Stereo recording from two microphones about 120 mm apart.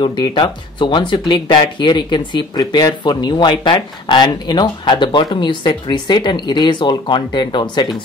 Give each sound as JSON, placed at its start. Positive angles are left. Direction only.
{"t": 0.0, "sound": "speech", "side_deg": 45}